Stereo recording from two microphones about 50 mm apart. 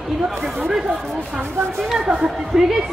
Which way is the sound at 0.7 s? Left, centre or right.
Centre.